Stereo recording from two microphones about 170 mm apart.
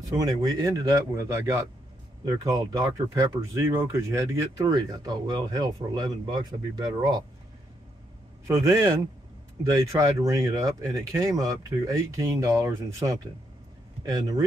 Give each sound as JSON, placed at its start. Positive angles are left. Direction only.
{"t": 0.2, "sound": "speech", "side_deg": -20}
{"t": 8.5, "sound": "a man's voice", "side_deg": -20}